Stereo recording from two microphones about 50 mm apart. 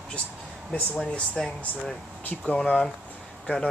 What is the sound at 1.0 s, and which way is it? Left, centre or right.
Speech, left.